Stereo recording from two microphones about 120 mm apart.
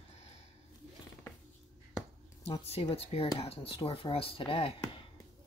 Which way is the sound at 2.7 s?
50° left (ahead or behind).